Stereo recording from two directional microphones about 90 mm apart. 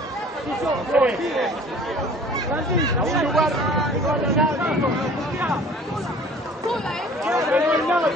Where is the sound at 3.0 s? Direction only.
Centre (ahead or behind).